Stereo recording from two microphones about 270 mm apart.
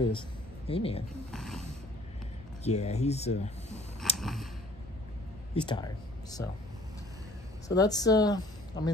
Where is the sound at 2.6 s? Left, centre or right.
Left.